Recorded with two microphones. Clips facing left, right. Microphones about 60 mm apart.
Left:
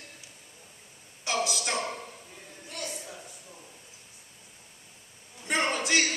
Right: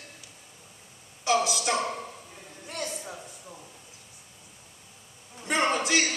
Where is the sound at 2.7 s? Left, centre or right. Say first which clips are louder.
Right 4 dB; right.